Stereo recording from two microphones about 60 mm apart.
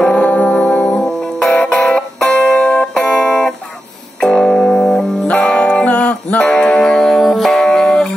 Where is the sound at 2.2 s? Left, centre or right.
Centre.